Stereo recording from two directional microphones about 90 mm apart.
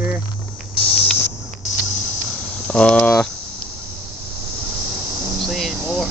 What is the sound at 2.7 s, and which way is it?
Speech, 10° left (ahead or behind).